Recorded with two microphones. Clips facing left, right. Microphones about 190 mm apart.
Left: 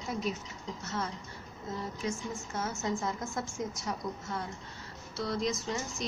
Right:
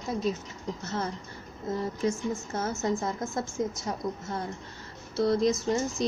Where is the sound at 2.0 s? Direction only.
40° right (ahead or behind).